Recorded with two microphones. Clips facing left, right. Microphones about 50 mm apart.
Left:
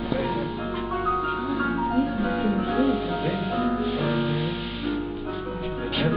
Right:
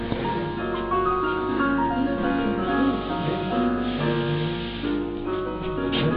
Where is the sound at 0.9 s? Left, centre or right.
Centre.